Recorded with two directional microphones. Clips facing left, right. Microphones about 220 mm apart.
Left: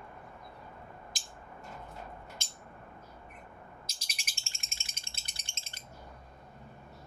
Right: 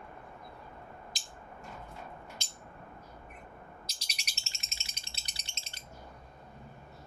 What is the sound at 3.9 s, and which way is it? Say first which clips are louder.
Bird: right 1 dB; 50° left (ahead or behind).